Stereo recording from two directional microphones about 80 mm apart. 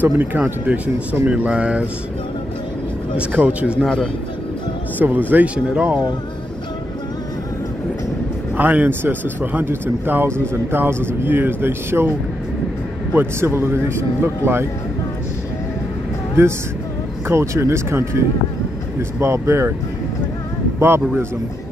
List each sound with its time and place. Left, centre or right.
0.0 s speech: right
3.2 s speech: centre
3.8 s speech: centre
4.9 s speech: right
8.5 s speech: right
13.1 s speech: right
16.4 s speech: right